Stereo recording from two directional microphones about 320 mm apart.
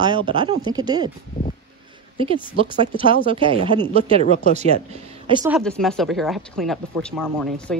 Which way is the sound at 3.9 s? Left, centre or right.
Left.